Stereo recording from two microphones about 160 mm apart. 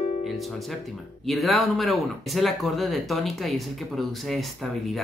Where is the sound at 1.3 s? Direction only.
Centre (ahead or behind).